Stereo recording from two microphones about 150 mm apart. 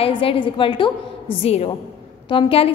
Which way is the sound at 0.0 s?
40° left (ahead or behind).